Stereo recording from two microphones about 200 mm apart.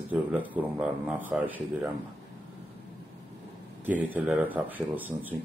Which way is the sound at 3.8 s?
10° right (ahead or behind).